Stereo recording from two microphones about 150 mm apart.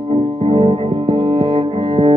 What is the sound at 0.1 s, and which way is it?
Music, 40° right (ahead or behind).